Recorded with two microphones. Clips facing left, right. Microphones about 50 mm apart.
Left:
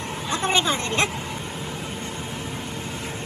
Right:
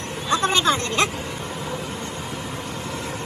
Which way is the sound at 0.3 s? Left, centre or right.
Left.